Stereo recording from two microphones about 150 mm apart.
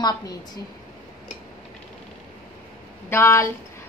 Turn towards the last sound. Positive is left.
turn(degrees=15)  # may be behind; listen again after turning